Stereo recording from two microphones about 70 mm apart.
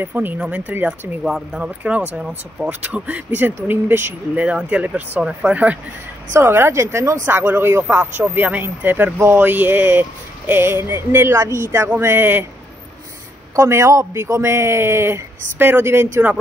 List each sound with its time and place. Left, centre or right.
0.0 s speech: right
1.2 s speech: centre; by 4.1 s right
4.4 s speech: centre
6.3 s speech: right
7.2 s a man's voice: right
13.6 s a man's voice: right